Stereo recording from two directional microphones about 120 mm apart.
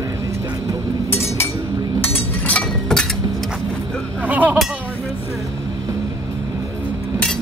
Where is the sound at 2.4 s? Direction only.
10° left (ahead or behind).